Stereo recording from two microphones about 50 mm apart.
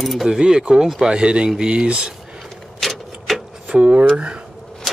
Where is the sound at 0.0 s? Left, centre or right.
Centre.